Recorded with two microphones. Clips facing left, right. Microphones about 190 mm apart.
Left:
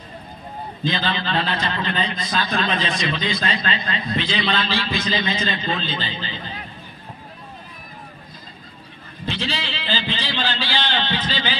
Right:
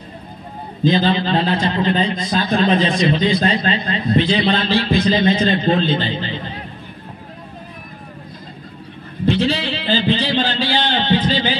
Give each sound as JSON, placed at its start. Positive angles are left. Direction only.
{"t": 0.8, "sound": "a man's voice", "side_deg": -35}
{"t": 3.8, "sound": "a man's voice", "side_deg": -35}
{"t": 4.5, "sound": "a man's voice", "side_deg": -50}
{"t": 9.2, "sound": "a sound", "side_deg": -55}
{"t": 11.2, "sound": "speech", "side_deg": -50}